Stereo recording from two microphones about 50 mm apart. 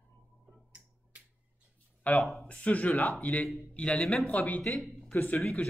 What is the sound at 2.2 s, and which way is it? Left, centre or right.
Speech, centre.